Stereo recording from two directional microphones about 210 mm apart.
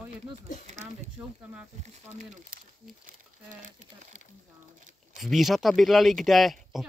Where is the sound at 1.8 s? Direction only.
35° right (ahead or behind).